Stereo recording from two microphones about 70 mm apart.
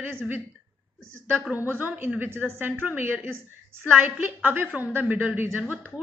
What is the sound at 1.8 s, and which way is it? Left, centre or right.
A woman's voice, right.